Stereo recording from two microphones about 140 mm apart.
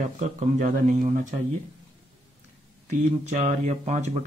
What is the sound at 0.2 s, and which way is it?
Speech, 60° right (ahead or behind).